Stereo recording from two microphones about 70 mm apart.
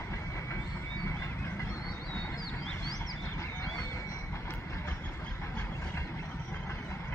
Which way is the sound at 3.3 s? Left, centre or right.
Left.